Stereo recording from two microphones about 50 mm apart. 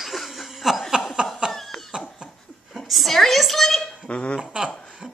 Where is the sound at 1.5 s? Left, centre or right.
Centre.